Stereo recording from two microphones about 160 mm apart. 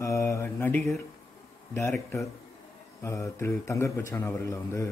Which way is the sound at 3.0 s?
15° left (ahead or behind).